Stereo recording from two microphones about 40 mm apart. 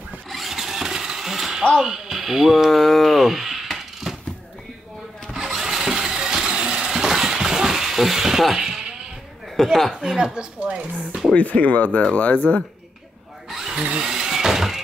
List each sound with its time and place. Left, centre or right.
0.3 s a sound: centre
5.3 s mechanisms: centre
9.6 s speech: centre
9.9 s a woman's voice: centre
11.3 s speech: left
13.5 s drill: centre
13.9 s a sound: centre